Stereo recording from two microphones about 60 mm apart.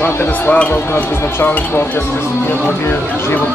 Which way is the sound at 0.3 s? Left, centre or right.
Left.